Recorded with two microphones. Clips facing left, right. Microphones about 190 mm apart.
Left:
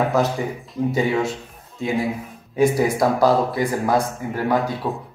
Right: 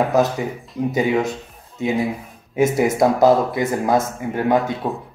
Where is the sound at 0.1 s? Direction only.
20° right (ahead or behind).